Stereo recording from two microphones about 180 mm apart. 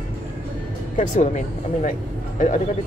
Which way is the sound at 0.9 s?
45° left (ahead or behind).